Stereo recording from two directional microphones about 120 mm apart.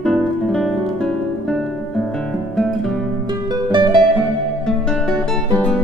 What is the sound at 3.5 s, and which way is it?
Music, 40° right (ahead or behind).